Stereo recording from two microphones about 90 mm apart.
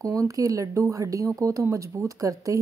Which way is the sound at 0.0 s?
40° right (ahead or behind).